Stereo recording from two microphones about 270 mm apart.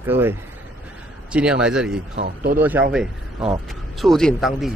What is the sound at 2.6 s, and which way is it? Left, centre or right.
Speech, centre.